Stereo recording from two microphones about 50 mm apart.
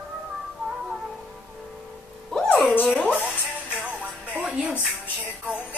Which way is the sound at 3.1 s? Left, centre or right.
Right.